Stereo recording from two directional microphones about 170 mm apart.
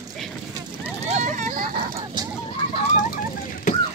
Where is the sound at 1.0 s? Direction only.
45° right (ahead or behind).